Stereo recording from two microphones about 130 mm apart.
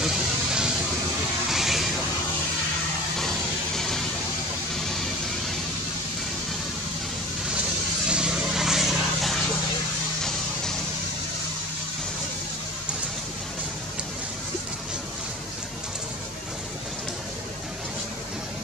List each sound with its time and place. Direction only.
0.0 s music: 5° right (ahead or behind)
1.5 s vehicle: centre (ahead or behind)
3.2 s a sound: 5° left (ahead or behind)
4.7 s vehicle: centre (ahead or behind)
8.1 s vehicle: 5° right (ahead or behind)